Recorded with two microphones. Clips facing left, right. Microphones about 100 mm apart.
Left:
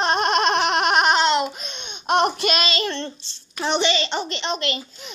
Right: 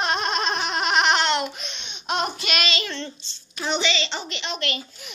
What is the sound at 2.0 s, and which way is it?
Baby cry, 55° left (ahead or behind).